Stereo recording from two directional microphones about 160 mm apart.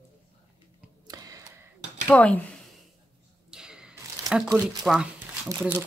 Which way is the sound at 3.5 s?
5° right (ahead or behind).